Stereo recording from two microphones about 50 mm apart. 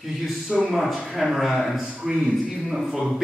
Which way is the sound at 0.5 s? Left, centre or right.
Centre.